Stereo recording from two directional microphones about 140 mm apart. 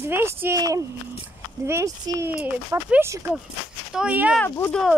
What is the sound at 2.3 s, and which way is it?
Speech, 10° right (ahead or behind).